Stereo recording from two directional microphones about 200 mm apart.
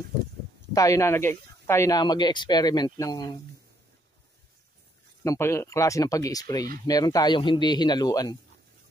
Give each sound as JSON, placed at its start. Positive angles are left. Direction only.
{"t": 0.7, "sound": "speech", "side_deg": 15}
{"t": 5.2, "sound": "speech", "side_deg": 15}